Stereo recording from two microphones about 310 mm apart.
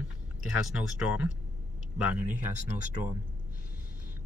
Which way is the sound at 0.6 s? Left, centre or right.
Centre.